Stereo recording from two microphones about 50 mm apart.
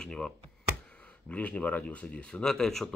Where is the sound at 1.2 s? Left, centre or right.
Left; by 2.9 s centre.